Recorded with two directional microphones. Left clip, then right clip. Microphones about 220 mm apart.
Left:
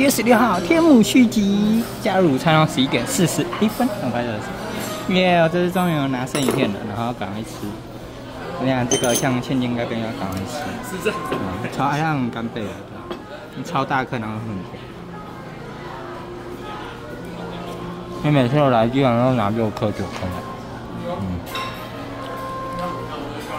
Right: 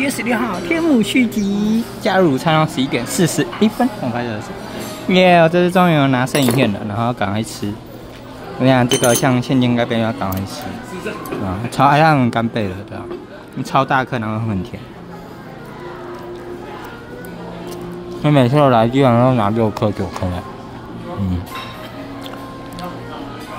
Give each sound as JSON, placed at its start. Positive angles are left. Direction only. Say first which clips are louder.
{"t": 0.0, "sound": "speech", "louder": "left 3 dB", "side_deg": 20}
{"t": 1.5, "sound": "speech", "louder": "right 1 dB", "side_deg": -5}
{"t": 8.6, "sound": "speech", "louder": "right 6 dB", "side_deg": -25}
{"t": 11.7, "sound": "speech", "louder": "right 10 dB", "side_deg": -20}
{"t": 18.2, "sound": "speech", "louder": "right 4 dB", "side_deg": -15}